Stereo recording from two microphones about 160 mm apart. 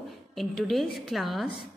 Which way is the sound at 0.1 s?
Centre (ahead or behind).